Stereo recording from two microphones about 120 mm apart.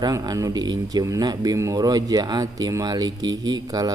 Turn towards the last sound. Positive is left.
turn(degrees=-35)  # may be behind; listen again after turning